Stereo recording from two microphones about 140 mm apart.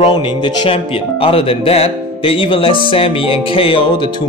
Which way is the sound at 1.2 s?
45° left (ahead or behind).